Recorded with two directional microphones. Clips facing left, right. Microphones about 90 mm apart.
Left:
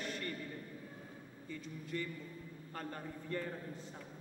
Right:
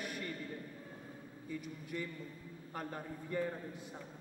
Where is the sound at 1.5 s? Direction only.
10° right (ahead or behind).